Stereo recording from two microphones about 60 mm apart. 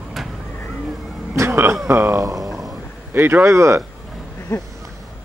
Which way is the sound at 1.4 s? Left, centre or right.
Right.